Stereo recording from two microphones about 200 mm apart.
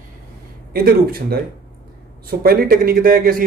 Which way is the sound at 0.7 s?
50° right (ahead or behind).